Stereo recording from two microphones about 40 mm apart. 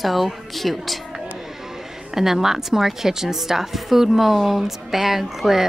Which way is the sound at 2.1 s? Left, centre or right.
Centre.